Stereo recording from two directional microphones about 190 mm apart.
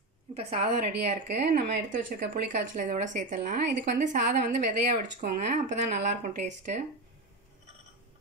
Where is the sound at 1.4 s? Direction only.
50° right (ahead or behind).